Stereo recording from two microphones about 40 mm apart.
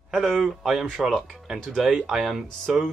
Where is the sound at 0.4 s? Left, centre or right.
Centre.